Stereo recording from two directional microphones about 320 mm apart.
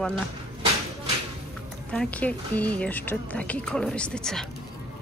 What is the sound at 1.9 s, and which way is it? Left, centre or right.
A woman's voice, centre.